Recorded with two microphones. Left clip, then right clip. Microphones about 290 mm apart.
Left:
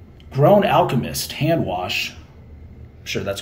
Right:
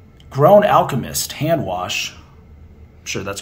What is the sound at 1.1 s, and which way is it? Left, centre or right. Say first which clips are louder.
Speech: right 2 dB; right.